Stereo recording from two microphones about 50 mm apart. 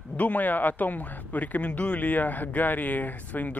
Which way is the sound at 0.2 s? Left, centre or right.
Left.